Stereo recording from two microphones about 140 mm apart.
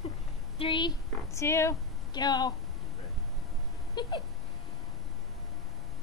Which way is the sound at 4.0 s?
30° left (ahead or behind).